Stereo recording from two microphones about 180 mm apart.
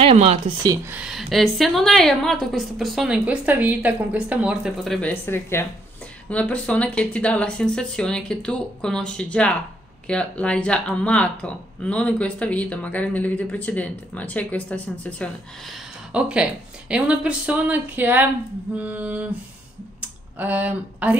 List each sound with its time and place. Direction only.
0.0 s speech: 35° right (ahead or behind)
0.7 s a woman's voice: 10° right (ahead or behind)
5.0 s a woman's voice: 15° left (ahead or behind)
16.1 s a woman's voice: 5° right (ahead or behind)